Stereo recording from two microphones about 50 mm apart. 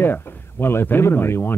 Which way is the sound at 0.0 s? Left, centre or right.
Left.